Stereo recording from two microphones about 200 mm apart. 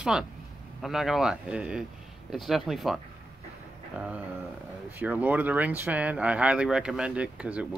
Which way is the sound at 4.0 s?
5° right (ahead or behind).